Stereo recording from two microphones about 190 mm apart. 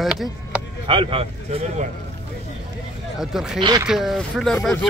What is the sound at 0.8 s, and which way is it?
A man's voice, 30° right (ahead or behind).